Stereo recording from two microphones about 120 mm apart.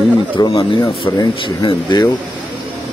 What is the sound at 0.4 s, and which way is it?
Speech, 45° left (ahead or behind).